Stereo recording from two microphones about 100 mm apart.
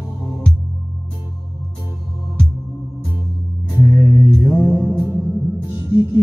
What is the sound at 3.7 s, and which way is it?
Music, 25° left (ahead or behind).